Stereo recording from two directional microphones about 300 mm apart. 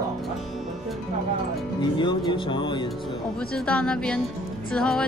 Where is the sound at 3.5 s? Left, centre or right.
Centre.